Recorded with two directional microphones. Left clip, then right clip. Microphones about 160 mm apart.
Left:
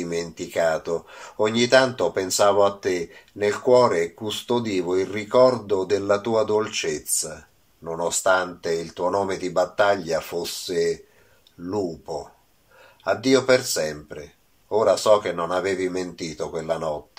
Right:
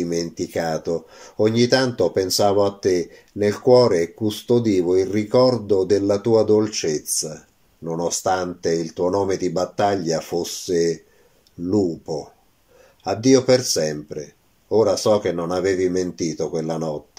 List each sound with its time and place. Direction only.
0.0 s speech: 35° right (ahead or behind)
13.0 s speech: 40° right (ahead or behind)